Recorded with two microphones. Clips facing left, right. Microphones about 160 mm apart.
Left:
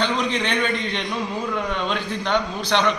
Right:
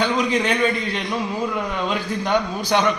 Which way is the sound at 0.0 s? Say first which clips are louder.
Right 3 dB; 10° right (ahead or behind).